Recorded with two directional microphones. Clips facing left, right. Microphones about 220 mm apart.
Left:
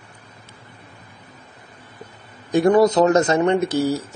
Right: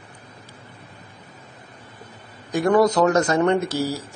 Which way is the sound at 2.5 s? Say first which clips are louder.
Left 3 dB; 25° left (ahead or behind).